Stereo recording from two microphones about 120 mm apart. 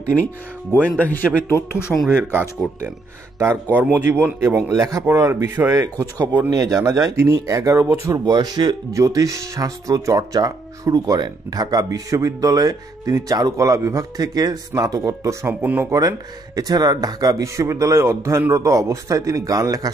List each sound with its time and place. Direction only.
1.0 s speech: 15° left (ahead or behind)
2.6 s speech: centre (ahead or behind)
3.8 s speech: 15° right (ahead or behind)